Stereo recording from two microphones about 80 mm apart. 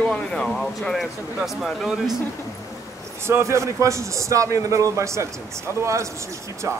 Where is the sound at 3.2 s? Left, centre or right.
Right.